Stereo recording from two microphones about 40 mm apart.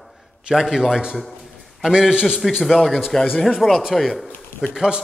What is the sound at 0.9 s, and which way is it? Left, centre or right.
Speech, centre.